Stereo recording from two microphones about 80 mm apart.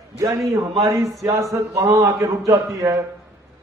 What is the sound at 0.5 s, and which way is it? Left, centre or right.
A man's voice, right.